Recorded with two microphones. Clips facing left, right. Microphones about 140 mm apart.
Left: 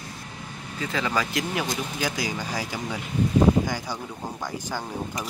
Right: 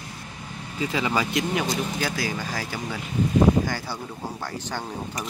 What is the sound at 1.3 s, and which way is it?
Speech, centre (ahead or behind).